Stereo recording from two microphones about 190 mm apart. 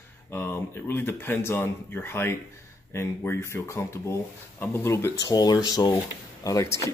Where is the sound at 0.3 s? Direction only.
10° left (ahead or behind).